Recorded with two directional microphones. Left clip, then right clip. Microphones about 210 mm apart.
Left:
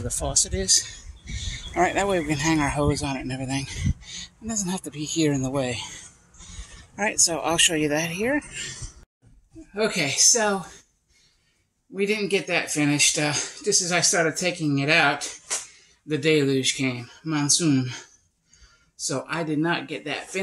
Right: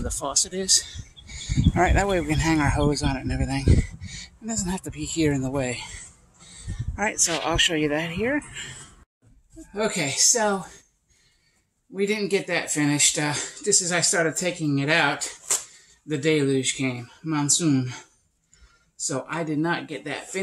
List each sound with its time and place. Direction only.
0.1 s speech: centre (ahead or behind)
6.5 s bleat: 5° left (ahead or behind)
7.2 s speech: 5° left (ahead or behind)
11.9 s speech: centre (ahead or behind)